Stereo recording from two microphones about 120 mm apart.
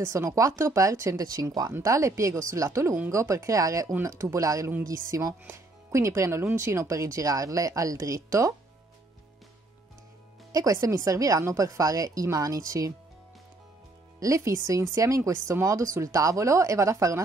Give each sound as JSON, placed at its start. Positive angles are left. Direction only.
{"t": 0.1, "sound": "speech", "side_deg": -25}
{"t": 10.5, "sound": "speech", "side_deg": -30}
{"t": 14.2, "sound": "speech", "side_deg": -25}